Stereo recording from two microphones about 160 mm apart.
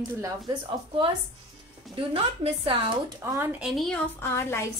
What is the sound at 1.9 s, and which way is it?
Speech, 35° right (ahead or behind).